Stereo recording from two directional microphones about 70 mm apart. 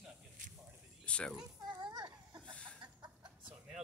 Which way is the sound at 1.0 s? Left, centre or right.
Centre.